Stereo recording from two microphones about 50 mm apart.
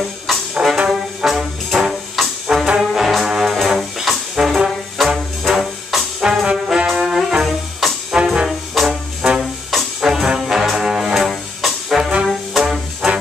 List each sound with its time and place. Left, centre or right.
0.3 s brass instrument: centre
2.4 s brass instrument: centre
2.8 s brass instrument: centre
6.4 s trombone: centre
7.0 s brass instrument: centre
12.0 s trombone: right
12.3 s music: centre